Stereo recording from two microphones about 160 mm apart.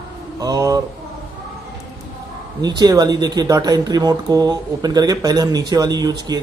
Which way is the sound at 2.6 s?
25° right (ahead or behind).